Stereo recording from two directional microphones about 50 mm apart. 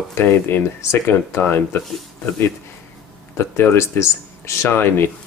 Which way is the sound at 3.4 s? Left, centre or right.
Left.